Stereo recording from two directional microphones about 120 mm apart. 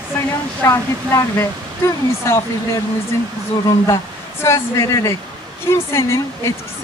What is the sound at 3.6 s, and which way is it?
A woman's voice, 25° left (ahead or behind).